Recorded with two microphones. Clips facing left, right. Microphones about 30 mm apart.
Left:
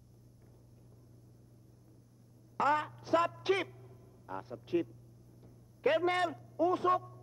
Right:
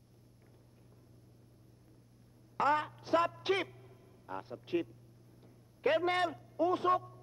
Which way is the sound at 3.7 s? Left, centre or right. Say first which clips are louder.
Left 1 dB; right.